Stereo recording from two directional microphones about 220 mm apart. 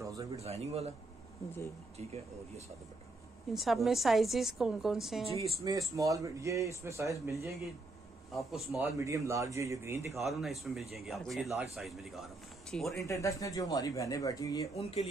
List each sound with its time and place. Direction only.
0.0 s a sound: 15° right (ahead or behind)
0.4 s speech: 30° right (ahead or behind)
3.5 s speech: centre (ahead or behind)
5.6 s a man's voice: 15° right (ahead or behind)
8.3 s speech: centre (ahead or behind)
8.9 s a man's voice: 15° right (ahead or behind)
10.1 s speech: centre (ahead or behind)
12.9 s speech: 15° left (ahead or behind)
14.8 s speech: 30° left (ahead or behind)